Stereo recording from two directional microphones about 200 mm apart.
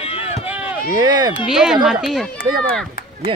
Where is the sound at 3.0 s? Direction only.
45° left (ahead or behind).